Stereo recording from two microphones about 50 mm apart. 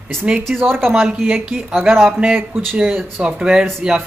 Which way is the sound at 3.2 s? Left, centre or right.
Centre.